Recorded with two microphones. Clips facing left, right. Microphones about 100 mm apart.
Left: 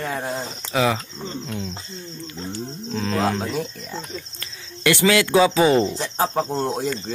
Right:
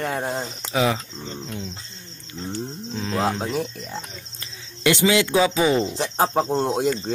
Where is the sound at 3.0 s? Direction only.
10° right (ahead or behind).